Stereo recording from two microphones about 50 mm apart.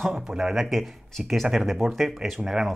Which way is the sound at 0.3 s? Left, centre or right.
Centre.